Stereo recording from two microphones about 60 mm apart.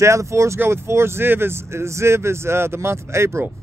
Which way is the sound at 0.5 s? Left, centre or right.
Right.